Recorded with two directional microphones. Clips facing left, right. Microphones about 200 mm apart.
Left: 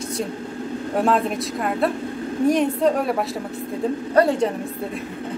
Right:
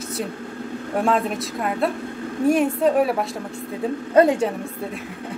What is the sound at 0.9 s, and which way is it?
A woman's voice, centre (ahead or behind).